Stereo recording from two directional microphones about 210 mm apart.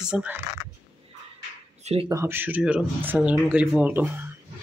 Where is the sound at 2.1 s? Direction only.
10° right (ahead or behind).